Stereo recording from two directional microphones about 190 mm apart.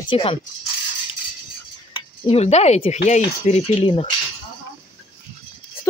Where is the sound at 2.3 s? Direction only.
35° left (ahead or behind).